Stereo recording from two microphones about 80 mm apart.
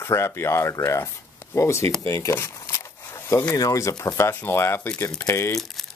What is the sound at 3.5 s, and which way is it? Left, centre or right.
Speech, left.